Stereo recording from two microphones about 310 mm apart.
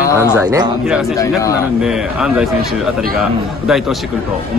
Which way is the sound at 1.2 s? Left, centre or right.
Centre.